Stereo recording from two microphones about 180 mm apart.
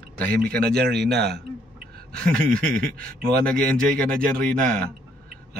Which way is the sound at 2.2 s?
55° right (ahead or behind).